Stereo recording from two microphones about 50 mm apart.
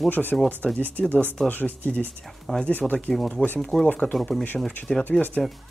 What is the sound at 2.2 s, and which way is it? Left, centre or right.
Speech, centre.